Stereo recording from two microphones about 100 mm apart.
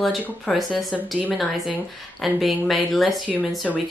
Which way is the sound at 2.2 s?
Centre (ahead or behind).